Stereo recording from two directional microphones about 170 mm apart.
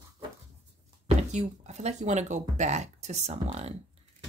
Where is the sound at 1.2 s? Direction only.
40° right (ahead or behind).